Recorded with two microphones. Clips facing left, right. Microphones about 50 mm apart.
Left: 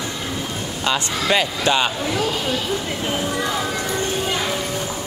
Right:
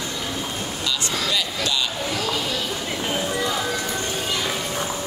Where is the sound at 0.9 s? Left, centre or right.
Left.